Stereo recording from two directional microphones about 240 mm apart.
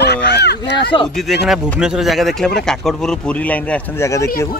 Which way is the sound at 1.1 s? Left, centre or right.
Centre.